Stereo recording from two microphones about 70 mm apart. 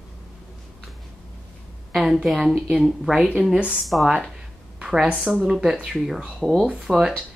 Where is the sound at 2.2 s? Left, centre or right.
Centre.